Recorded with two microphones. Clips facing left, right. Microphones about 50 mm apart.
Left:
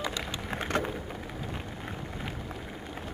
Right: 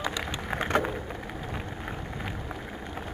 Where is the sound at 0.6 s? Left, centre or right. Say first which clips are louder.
Right 4 dB; right.